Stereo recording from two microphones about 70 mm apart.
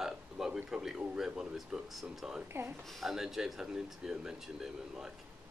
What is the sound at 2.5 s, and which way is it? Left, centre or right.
Speech, right.